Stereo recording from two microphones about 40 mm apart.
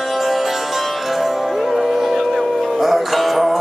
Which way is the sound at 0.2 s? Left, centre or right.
Centre.